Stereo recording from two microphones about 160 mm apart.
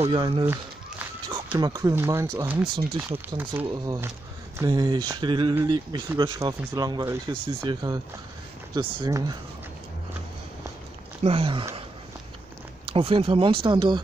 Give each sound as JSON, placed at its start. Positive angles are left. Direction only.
{"t": 0.0, "sound": "speech", "side_deg": -25}
{"t": 0.5, "sound": "walk", "side_deg": -15}
{"t": 1.6, "sound": "speech", "side_deg": -20}
{"t": 3.6, "sound": "speech", "side_deg": -25}
{"t": 9.0, "sound": "speech", "side_deg": -25}
{"t": 11.2, "sound": "speech", "side_deg": -35}
{"t": 12.8, "sound": "speech", "side_deg": -35}